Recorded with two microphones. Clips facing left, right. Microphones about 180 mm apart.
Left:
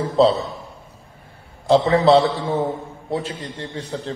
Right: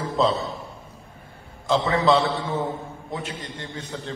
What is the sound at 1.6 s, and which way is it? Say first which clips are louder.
A man's voice: left 6 dB; 35° left (ahead or behind).